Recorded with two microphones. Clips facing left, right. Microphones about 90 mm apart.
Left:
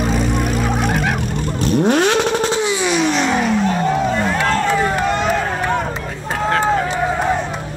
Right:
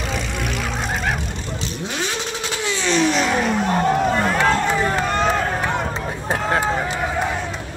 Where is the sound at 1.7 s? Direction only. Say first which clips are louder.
Left 15 dB; 55° left (ahead or behind).